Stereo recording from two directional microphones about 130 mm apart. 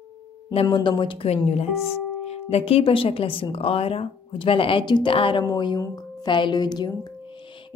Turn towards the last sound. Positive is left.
turn(degrees=30)  # may be behind; listen again after turning